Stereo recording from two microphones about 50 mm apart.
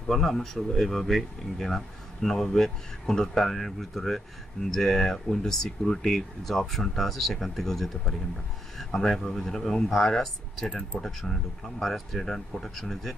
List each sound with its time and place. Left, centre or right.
0.1 s speech: centre
10.7 s speech: centre
11.1 s speech: centre